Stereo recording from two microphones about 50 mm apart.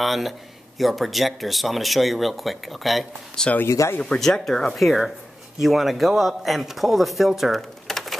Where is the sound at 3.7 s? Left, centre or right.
Left.